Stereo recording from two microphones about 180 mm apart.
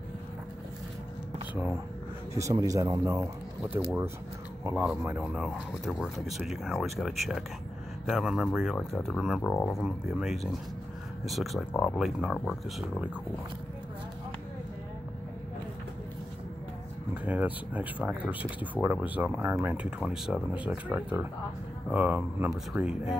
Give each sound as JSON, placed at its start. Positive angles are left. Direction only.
{"t": 1.5, "sound": "speech", "side_deg": -10}
{"t": 5.0, "sound": "speech", "side_deg": -10}
{"t": 9.5, "sound": "speech", "side_deg": 15}
{"t": 9.8, "sound": "speech", "side_deg": 0}
{"t": 11.7, "sound": "speech", "side_deg": 10}
{"t": 12.0, "sound": "speech", "side_deg": 0}
{"t": 17.2, "sound": "speech", "side_deg": -10}